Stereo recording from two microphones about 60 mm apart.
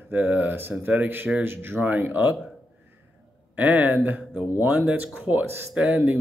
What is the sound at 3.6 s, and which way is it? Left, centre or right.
Speech, right.